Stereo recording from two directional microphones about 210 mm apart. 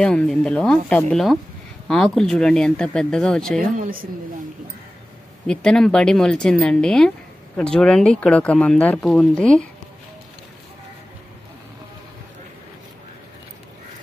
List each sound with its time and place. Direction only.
0.0 s speech: 5° left (ahead or behind)
3.7 s a woman's voice: 40° right (ahead or behind)
5.5 s speech: 5° left (ahead or behind)